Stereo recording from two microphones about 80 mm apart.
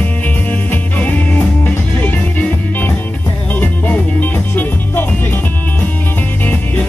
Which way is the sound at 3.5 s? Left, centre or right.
Left.